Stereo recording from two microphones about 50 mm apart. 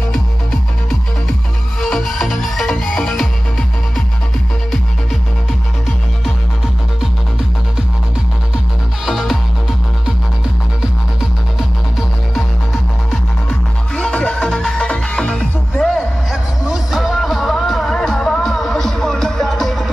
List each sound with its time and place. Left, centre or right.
1.8 s music: centre
9.0 s music: centre
13.9 s music: left
15.8 s music: centre
16.6 s music: centre